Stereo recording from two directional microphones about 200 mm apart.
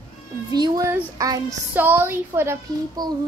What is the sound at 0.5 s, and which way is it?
A child's voice, 15° right (ahead or behind).